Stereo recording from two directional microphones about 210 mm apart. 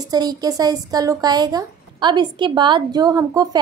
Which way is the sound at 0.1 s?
20° right (ahead or behind).